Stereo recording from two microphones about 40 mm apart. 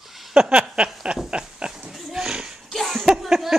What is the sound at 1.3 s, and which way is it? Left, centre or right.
Pig, right.